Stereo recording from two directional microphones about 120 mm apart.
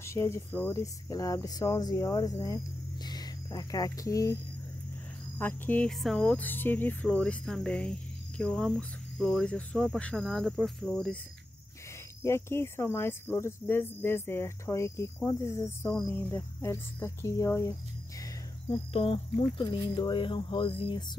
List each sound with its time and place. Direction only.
0.0 s speech: 25° left (ahead or behind)
5.4 s speech: 15° left (ahead or behind)
5.9 s speech: centre (ahead or behind)
12.2 s speech: 20° left (ahead or behind)
18.7 s speech: 50° left (ahead or behind)
19.6 s speech: 40° left (ahead or behind)